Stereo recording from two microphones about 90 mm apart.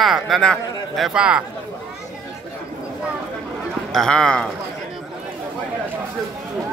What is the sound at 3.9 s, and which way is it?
Speech, 5° left (ahead or behind).